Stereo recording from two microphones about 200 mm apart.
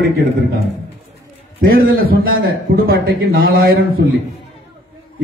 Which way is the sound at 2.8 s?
50° right (ahead or behind).